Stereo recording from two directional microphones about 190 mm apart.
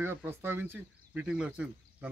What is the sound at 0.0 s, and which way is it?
Speech, 10° right (ahead or behind).